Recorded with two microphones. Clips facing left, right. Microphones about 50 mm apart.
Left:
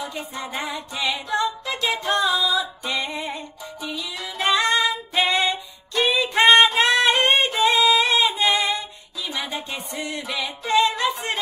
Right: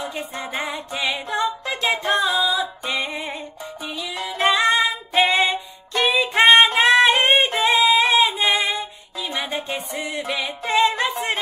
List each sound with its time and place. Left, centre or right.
0.0 s female singing: right
2.2 s music: centre; by 4.3 s right
4.4 s music: centre
6.8 s singing: right
7.6 s music: right
8.5 s female singing: centre
9.7 s music: right